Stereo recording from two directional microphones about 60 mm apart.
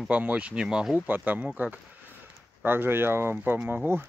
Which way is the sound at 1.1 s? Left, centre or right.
Right.